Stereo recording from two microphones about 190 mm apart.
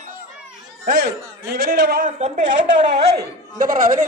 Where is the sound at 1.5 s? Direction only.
55° right (ahead or behind).